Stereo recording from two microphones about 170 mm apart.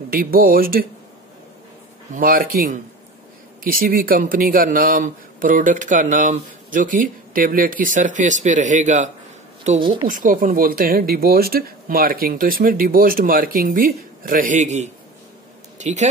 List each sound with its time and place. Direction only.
0.1 s speech: 60° right (ahead or behind)
2.1 s a man's voice: 60° right (ahead or behind)
9.8 s speech: 30° right (ahead or behind)
10.0 s speech: 55° right (ahead or behind)